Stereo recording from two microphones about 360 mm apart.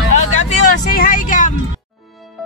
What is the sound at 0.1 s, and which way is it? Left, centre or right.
Vehicle, centre.